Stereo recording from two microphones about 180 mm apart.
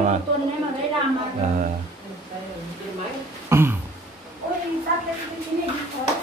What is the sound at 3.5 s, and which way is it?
Throat clearing, 10° right (ahead or behind).